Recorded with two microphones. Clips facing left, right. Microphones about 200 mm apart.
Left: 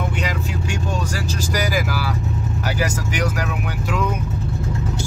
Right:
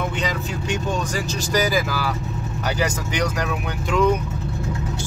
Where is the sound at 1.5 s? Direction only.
10° left (ahead or behind).